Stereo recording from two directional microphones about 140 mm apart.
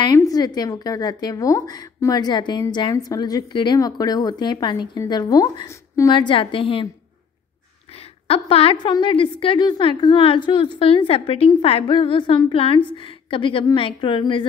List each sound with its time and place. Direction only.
0.0 s a woman's voice: 25° left (ahead or behind)
6.1 s a woman's voice: 35° left (ahead or behind)
7.9 s a sound: 45° left (ahead or behind)
8.8 s a woman's voice: 35° left (ahead or behind)